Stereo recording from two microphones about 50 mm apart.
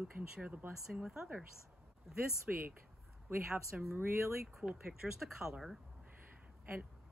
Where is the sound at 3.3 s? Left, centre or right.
Right.